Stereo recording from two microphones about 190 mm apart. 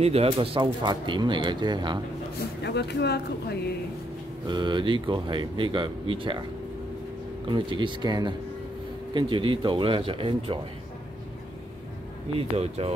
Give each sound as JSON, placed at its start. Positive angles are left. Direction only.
{"t": 0.0, "sound": "speech", "side_deg": -30}
{"t": 2.6, "sound": "speech", "side_deg": 60}
{"t": 4.5, "sound": "speech", "side_deg": -25}
{"t": 7.4, "sound": "speech", "side_deg": -25}
{"t": 12.4, "sound": "speech", "side_deg": -30}